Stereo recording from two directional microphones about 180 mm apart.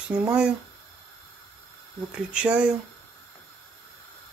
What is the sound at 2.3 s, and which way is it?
Speech, 5° right (ahead or behind).